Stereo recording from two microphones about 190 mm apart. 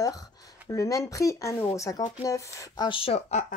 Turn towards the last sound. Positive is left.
turn(degrees=30)  # may be behind; listen again after turning